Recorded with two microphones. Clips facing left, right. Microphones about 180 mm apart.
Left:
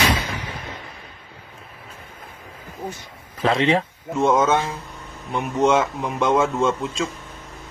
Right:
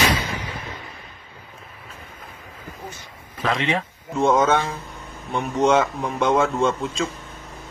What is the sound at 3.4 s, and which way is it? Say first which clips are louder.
Speech: left 4 dB; 30° left (ahead or behind).